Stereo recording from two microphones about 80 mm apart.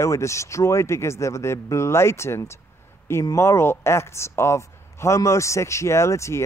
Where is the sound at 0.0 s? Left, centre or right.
Left.